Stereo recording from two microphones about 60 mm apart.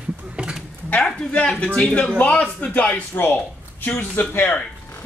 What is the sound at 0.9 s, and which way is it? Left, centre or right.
A man's voice, centre.